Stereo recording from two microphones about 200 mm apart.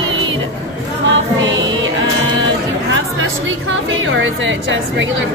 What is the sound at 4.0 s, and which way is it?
A woman's voice, 70° right (ahead or behind).